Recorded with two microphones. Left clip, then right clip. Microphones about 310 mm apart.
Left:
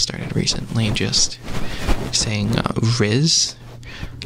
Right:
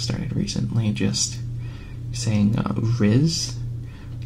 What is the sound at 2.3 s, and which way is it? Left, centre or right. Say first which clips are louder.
Speech: left 3 dB; left.